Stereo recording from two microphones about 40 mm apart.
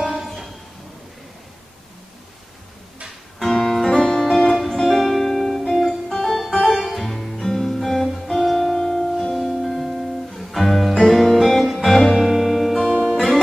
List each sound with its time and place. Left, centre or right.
0.0 s music: centre
3.3 s music: centre
8.7 s music: centre
9.2 s music: centre